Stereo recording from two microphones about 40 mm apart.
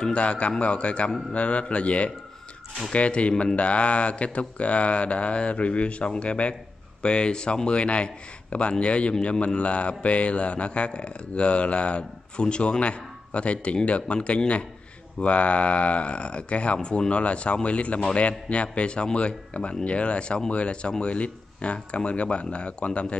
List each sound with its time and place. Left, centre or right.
0.0 s speech: left